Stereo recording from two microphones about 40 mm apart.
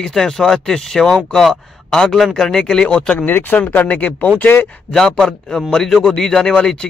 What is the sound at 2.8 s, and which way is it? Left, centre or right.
Speech, left.